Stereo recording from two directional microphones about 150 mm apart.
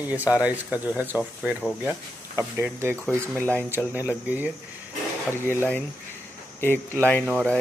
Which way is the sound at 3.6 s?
15° right (ahead or behind).